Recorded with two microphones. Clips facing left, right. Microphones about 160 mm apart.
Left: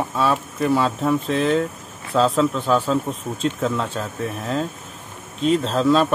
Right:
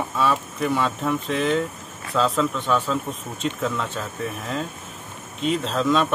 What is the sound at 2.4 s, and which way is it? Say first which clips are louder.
A man's voice: left 4 dB; 30° left (ahead or behind).